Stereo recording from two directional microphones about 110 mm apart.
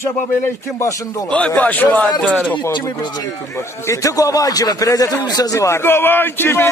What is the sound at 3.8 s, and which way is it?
A man's voice, 30° left (ahead or behind).